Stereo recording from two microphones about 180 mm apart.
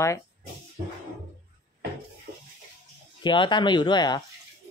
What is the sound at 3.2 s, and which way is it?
Speech, 25° left (ahead or behind).